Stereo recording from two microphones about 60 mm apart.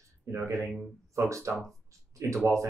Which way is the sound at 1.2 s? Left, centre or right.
Right.